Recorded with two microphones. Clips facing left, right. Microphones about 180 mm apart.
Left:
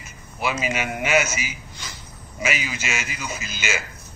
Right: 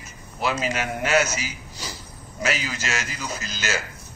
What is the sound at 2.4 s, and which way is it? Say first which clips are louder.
Speech: even; 15° left (ahead or behind).